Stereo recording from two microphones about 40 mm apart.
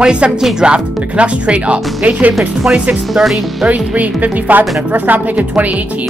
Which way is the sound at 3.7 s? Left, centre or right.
Right.